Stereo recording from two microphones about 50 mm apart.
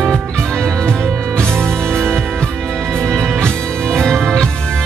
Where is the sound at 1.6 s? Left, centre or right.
Centre.